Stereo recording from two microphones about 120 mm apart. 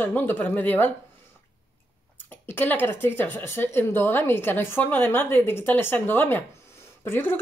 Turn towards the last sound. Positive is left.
turn(degrees=20)  # may be behind; listen again after turning